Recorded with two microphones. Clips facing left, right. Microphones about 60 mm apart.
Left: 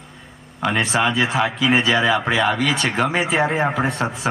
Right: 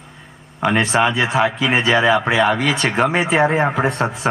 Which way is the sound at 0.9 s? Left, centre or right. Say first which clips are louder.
Right 1 dB; centre.